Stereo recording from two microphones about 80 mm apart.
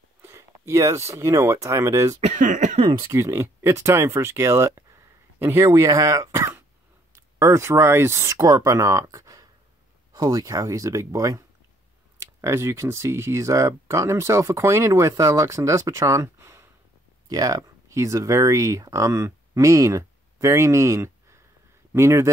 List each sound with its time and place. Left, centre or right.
0.2 s speech: right
2.9 s speech: right
12.2 s speech: right
17.3 s speech: right